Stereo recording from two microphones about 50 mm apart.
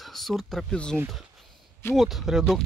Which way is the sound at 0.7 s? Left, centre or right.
Centre.